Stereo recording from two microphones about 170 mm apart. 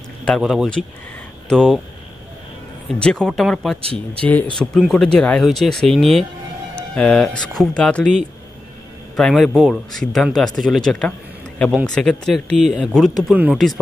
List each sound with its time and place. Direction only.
0.4 s a man's voice: 5° right (ahead or behind)
3.0 s a man's voice: 5° left (ahead or behind)
3.8 s speech: 35° right (ahead or behind)
4.2 s a man's voice: 10° left (ahead or behind)
9.1 s a man's voice: centre (ahead or behind)